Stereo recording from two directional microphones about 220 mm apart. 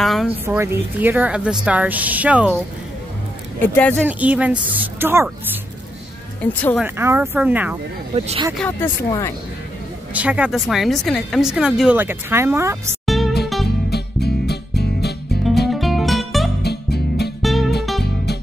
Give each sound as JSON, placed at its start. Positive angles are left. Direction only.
{"t": 0.0, "sound": "a woman's voice", "side_deg": 0}
{"t": 3.6, "sound": "speech", "side_deg": 5}
{"t": 4.0, "sound": "a woman's voice", "side_deg": -5}
{"t": 6.4, "sound": "speech", "side_deg": 5}
{"t": 6.8, "sound": "a woman's voice", "side_deg": -10}
{"t": 8.1, "sound": "speech", "side_deg": -25}
{"t": 8.5, "sound": "speech", "side_deg": 10}
{"t": 10.1, "sound": "speech", "side_deg": -5}
{"t": 13.0, "sound": "music", "side_deg": 0}
{"t": 13.8, "sound": "music", "side_deg": 45}
{"t": 15.7, "sound": "music", "side_deg": 0}
{"t": 16.6, "sound": "music", "side_deg": 50}
{"t": 17.4, "sound": "music", "side_deg": 0}
{"t": 18.0, "sound": "music", "side_deg": 50}